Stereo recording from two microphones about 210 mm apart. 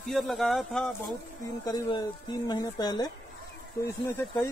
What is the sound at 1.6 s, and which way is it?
Speech, 20° left (ahead or behind).